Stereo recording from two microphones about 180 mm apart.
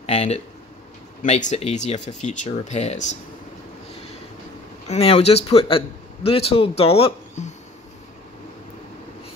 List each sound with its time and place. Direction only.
0.0 s a sound: 35° left (ahead or behind)
1.2 s speech: 40° left (ahead or behind)
4.8 s speech: 35° left (ahead or behind)